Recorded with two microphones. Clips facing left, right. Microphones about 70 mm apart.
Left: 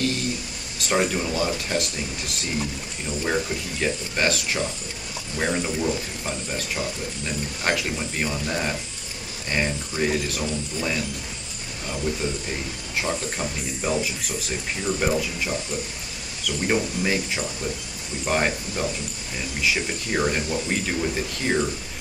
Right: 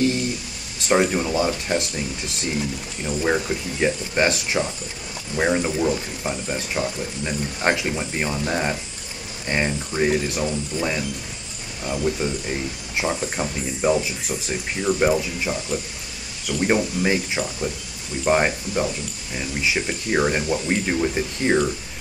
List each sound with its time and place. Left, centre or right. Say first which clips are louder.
0.8 s speech: right 4 dB; centre
3.1 s speech: right 3 dB; centre